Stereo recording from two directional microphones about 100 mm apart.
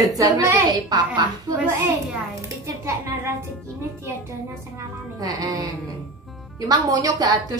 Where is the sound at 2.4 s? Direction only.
30° right (ahead or behind).